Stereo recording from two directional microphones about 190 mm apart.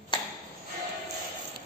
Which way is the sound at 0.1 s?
25° left (ahead or behind).